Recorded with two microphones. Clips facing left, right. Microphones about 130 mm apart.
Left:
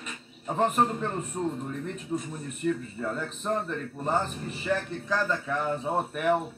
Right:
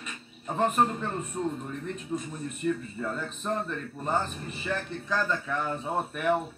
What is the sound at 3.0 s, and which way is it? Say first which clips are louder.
Speech: left 1 dB; 15° left (ahead or behind).